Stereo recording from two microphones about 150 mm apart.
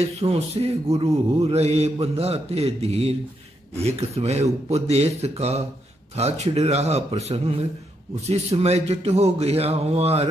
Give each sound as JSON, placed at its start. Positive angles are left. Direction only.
{"t": 0.0, "sound": "music", "side_deg": -40}